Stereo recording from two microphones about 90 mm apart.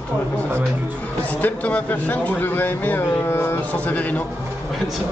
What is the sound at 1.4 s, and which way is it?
Speech, 20° left (ahead or behind).